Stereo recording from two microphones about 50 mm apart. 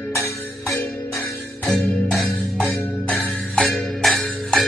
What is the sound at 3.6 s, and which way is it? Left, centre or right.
Music, centre.